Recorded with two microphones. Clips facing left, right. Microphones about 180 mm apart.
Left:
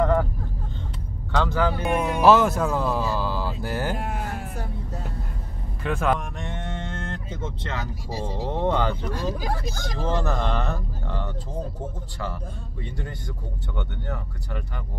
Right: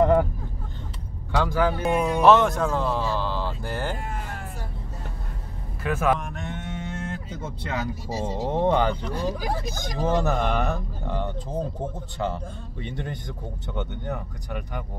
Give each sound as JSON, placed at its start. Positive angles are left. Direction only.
{"t": 0.0, "sound": "vehicle", "side_deg": -20}
{"t": 1.3, "sound": "speech", "side_deg": -10}
{"t": 2.1, "sound": "speech", "side_deg": 5}
{"t": 5.9, "sound": "speech", "side_deg": -5}
{"t": 12.8, "sound": "speech", "side_deg": -20}